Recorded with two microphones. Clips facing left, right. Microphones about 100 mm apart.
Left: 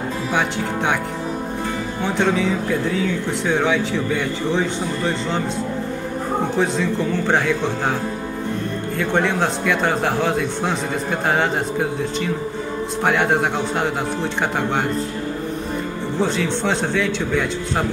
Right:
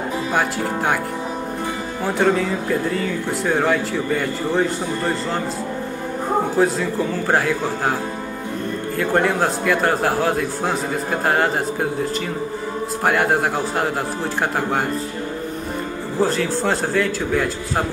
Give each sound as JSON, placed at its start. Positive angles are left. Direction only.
{"t": 0.3, "sound": "speech", "side_deg": 0}
{"t": 2.0, "sound": "speech", "side_deg": 0}
{"t": 6.5, "sound": "speech", "side_deg": -5}
{"t": 8.9, "sound": "speech", "side_deg": -5}
{"t": 16.2, "sound": "speech", "side_deg": 0}